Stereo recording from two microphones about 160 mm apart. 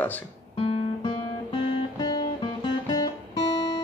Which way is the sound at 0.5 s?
30° left (ahead or behind).